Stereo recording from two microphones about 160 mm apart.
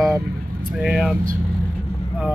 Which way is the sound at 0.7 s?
Centre (ahead or behind).